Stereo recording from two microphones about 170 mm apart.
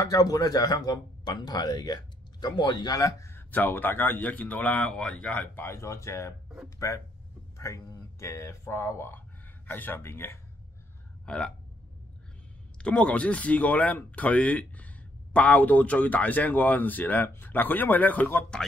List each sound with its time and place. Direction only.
0.0 s speech: 20° left (ahead or behind); by 11.5 s 5° left (ahead or behind)
12.7 s speech: 5° left (ahead or behind)